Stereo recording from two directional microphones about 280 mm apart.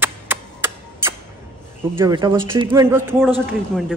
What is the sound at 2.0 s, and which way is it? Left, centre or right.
Speech, centre.